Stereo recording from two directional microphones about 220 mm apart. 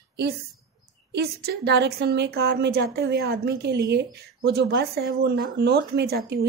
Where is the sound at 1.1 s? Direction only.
45° right (ahead or behind).